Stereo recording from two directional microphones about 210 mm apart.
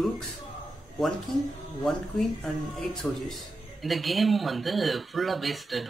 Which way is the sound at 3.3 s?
Centre (ahead or behind).